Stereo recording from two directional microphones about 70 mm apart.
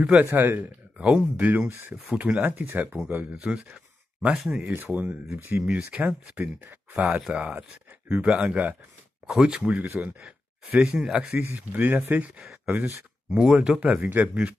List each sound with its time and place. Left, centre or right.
0.2 s speech: right
0.9 s speech: centre
2.5 s speech: right
3.3 s speech: centre
4.4 s speech: centre
4.6 s speech: right
5.7 s speech: centre
9.3 s speech: centre
9.6 s speech: right
10.2 s speech: centre
11.3 s speech: right
12.4 s speech: centre
12.7 s speech: right